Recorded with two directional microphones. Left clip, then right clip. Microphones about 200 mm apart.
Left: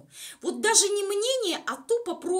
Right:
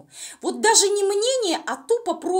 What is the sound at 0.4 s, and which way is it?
Speech, 20° right (ahead or behind).